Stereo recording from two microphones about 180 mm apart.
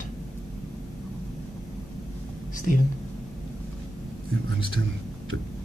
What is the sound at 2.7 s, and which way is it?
Speech, 50° left (ahead or behind).